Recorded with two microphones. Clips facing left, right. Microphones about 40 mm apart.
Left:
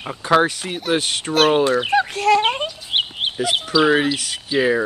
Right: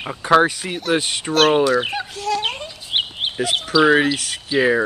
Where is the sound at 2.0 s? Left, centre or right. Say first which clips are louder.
Left 8 dB; left.